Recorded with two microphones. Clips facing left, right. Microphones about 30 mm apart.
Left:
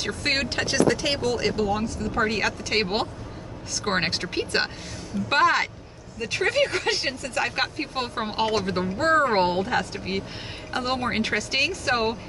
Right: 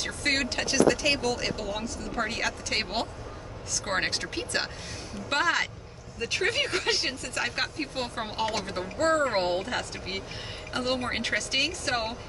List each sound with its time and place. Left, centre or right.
0.0 s speech: left
6.1 s speech: centre
7.6 s speech: left